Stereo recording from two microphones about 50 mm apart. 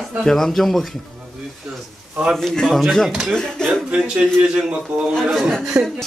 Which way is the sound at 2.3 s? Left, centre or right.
Centre.